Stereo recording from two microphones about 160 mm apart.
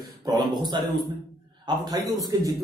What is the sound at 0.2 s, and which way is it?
A man's voice, 25° right (ahead or behind).